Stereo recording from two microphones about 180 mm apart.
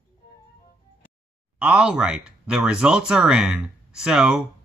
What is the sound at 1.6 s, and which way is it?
Speech, 5° right (ahead or behind).